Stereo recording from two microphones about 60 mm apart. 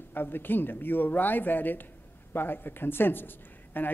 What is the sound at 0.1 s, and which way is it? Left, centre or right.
A man's voice, left.